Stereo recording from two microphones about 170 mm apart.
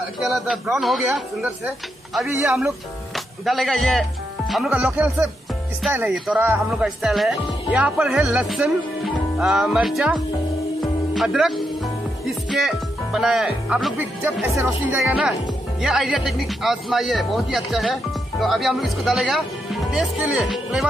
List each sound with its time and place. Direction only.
0.2 s speech: centre (ahead or behind)
2.2 s speech: 15° right (ahead or behind)
3.4 s speech: centre (ahead or behind)
14.5 s speech: 15° right (ahead or behind)
15.0 s speech: 5° right (ahead or behind)